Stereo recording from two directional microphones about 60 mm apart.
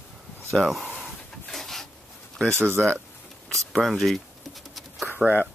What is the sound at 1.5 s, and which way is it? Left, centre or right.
Rub, centre.